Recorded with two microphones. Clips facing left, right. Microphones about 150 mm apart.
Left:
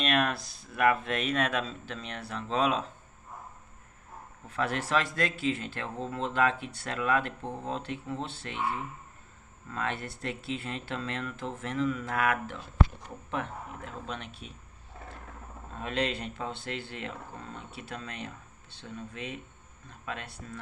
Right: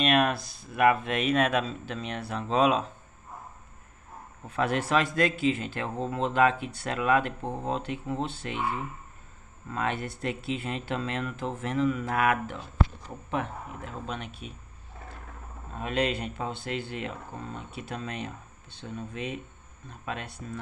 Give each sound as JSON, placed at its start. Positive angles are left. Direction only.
{"t": 0.0, "sound": "speech", "side_deg": -10}
{"t": 4.5, "sound": "speech", "side_deg": -15}
{"t": 9.7, "sound": "speech", "side_deg": -15}
{"t": 14.0, "sound": "speech", "side_deg": -5}
{"t": 15.8, "sound": "speech", "side_deg": -10}